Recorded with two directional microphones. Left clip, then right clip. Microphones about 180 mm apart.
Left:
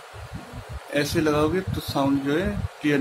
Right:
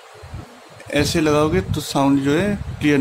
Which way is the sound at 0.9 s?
35° right (ahead or behind).